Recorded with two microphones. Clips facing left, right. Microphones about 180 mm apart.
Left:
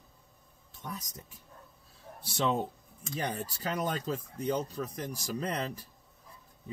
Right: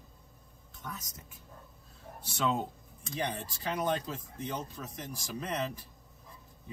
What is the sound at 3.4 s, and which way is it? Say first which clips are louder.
Speech: left 1 dB; 40° left (ahead or behind).